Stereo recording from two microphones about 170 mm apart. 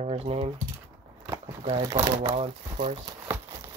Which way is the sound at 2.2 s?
35° right (ahead or behind).